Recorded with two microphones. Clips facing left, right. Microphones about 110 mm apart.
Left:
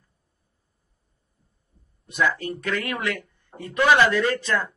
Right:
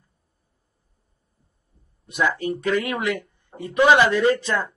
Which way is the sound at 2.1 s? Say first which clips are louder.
Right 1 dB; 20° right (ahead or behind).